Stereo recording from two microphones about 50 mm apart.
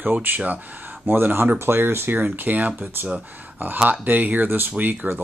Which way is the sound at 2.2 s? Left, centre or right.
Right.